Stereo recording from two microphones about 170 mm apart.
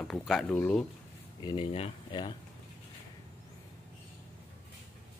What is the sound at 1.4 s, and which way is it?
Speech, 30° left (ahead or behind).